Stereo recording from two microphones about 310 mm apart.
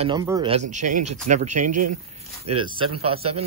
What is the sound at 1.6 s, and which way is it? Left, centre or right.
Speech, right.